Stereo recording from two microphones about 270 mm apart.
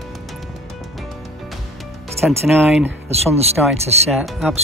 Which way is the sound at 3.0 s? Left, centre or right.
Right.